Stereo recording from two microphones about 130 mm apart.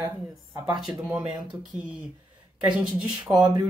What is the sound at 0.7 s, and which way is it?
Speech, centre (ahead or behind).